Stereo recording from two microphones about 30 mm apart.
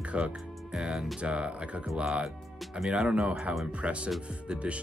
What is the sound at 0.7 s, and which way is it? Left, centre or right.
Speech, right.